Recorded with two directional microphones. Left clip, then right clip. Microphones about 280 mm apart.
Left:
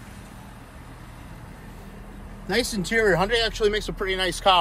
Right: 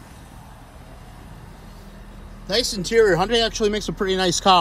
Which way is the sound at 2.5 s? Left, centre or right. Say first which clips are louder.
Right 3 dB; centre.